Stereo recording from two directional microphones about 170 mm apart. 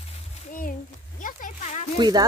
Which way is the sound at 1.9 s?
25° right (ahead or behind).